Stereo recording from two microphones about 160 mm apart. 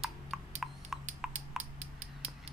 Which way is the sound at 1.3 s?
45° right (ahead or behind).